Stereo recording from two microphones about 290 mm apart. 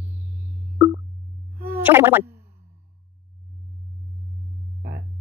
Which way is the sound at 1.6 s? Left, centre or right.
Centre.